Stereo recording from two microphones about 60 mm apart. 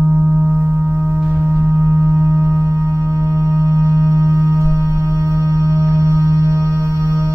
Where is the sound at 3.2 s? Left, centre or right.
Right.